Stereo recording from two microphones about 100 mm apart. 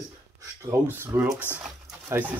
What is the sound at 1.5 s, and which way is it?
Speech, 20° left (ahead or behind).